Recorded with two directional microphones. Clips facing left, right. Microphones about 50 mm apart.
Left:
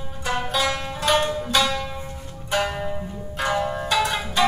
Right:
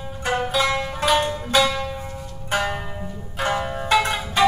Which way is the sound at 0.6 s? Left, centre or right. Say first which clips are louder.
Right 3 dB; right.